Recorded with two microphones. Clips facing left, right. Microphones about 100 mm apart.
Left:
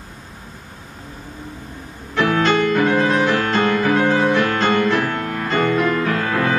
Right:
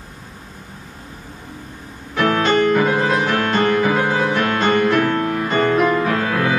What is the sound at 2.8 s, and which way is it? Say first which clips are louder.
Music: left 1 dB; 5° right (ahead or behind).